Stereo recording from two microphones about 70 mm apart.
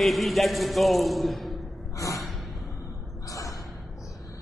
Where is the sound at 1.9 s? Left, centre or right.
Left.